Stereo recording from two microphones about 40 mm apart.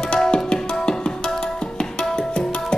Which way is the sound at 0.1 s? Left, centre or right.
Left.